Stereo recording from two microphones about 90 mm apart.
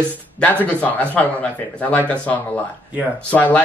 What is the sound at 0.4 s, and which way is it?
Speech, 15° left (ahead or behind).